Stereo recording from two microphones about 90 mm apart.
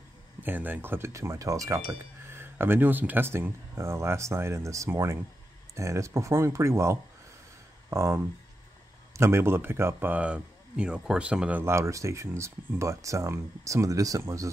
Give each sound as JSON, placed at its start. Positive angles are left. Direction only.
{"t": 0.4, "sound": "speech", "side_deg": -20}
{"t": 1.9, "sound": "speech", "side_deg": -25}
{"t": 11.6, "sound": "speech", "side_deg": -30}